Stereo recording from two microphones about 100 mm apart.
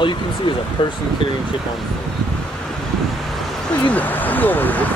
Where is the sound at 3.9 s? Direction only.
15° left (ahead or behind).